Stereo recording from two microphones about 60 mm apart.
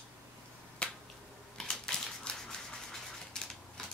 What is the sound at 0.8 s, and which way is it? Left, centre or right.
Finger snapping, centre.